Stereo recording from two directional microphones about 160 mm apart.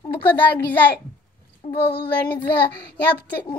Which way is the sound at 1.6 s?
40° left (ahead or behind).